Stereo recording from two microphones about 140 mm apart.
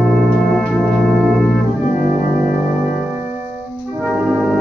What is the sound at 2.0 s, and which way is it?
Music, 15° right (ahead or behind).